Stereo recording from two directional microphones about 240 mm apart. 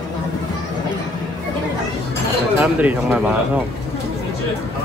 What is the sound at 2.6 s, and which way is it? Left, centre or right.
Speech, centre.